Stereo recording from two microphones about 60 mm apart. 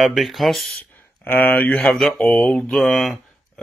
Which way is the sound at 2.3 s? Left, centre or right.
Left.